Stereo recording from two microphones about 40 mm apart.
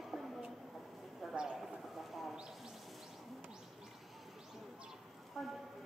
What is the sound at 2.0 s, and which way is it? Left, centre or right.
Speech, centre.